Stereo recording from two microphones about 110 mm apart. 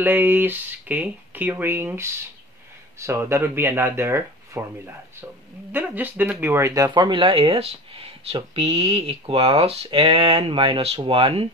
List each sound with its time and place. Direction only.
0.0 s speech: 15° right (ahead or behind)
6.9 s speech: 45° right (ahead or behind)